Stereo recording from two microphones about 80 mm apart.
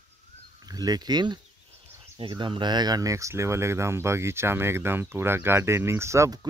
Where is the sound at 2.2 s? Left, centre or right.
Right.